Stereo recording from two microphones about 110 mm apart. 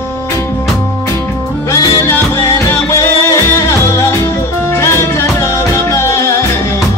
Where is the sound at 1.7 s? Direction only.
25° left (ahead or behind).